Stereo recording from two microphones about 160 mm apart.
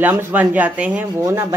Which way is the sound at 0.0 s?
10° right (ahead or behind).